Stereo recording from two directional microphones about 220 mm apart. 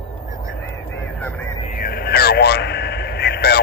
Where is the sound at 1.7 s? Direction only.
45° left (ahead or behind).